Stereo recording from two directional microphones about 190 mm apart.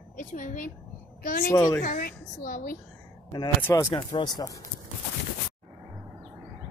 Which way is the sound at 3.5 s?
15° left (ahead or behind).